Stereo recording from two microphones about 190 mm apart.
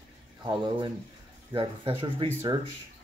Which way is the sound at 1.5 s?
25° right (ahead or behind).